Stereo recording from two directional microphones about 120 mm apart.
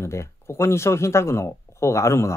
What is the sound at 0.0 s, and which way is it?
Speech, 25° left (ahead or behind).